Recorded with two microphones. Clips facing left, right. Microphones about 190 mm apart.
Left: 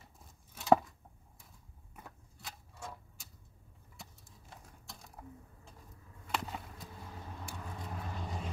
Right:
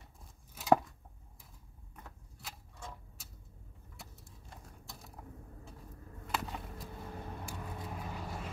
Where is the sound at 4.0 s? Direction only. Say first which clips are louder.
Even; centre (ahead or behind).